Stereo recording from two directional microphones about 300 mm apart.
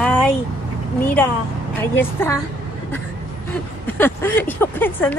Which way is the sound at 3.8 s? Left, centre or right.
Centre.